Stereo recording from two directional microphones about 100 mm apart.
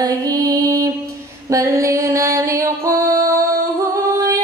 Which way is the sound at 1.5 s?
30° right (ahead or behind).